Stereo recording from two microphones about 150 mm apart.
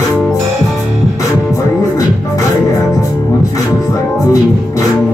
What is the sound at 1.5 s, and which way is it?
Music, 25° left (ahead or behind).